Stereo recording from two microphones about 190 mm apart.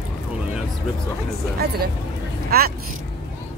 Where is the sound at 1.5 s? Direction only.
55° right (ahead or behind).